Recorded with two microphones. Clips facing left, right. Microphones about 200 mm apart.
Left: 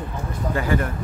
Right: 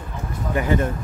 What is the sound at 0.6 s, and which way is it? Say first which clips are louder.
Speech: right 3 dB; 20° right (ahead or behind).